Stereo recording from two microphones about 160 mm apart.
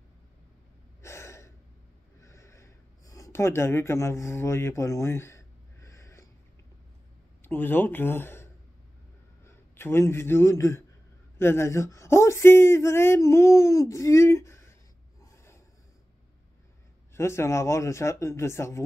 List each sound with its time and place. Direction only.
1.0 s gasp: 15° left (ahead or behind)
2.1 s a sound: 20° left (ahead or behind)
7.4 s a man's voice: 10° left (ahead or behind)
15.3 s snort: 15° left (ahead or behind)
17.1 s speech: 15° left (ahead or behind)